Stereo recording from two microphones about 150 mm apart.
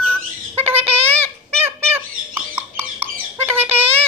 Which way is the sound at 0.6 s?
40° right (ahead or behind).